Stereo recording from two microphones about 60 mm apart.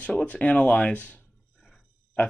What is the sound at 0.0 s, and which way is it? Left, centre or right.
Speech, left.